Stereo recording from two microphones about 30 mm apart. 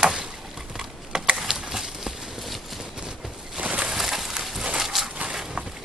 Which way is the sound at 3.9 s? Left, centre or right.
Centre.